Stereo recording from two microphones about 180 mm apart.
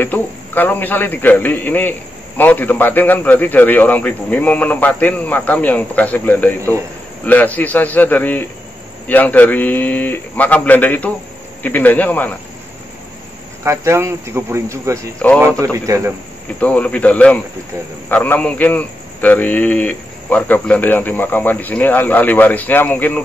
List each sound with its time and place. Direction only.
0.0 s a man's voice: 10° left (ahead or behind)
13.7 s speech: 15° right (ahead or behind)
15.2 s a man's voice: 5° left (ahead or behind)
15.6 s speech: 15° right (ahead or behind)
16.5 s a man's voice: 5° left (ahead or behind)